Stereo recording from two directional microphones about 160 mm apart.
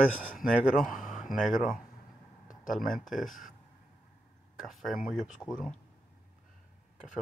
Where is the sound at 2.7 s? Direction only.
Centre (ahead or behind).